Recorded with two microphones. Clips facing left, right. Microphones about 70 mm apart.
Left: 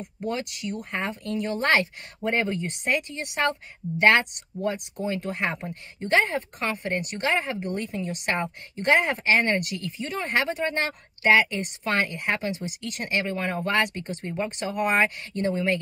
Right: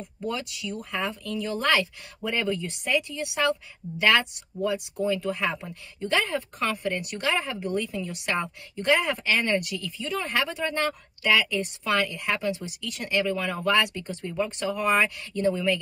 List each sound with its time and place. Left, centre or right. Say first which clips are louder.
0.3 s a woman's voice: left 2 dB; left